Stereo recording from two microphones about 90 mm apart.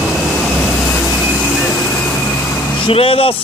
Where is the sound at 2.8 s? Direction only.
85° left.